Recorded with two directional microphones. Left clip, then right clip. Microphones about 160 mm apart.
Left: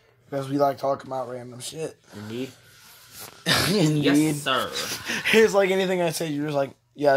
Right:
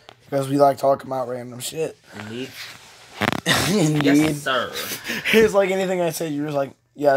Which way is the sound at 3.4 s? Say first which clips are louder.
Even; 15° right (ahead or behind).